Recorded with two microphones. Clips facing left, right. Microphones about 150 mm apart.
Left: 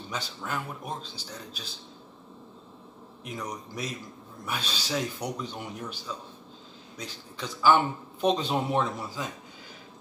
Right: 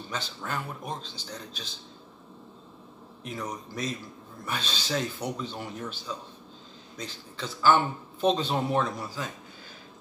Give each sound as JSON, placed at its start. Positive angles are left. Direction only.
{"t": 0.1, "sound": "a man's voice", "side_deg": 10}
{"t": 3.4, "sound": "a man's voice", "side_deg": 10}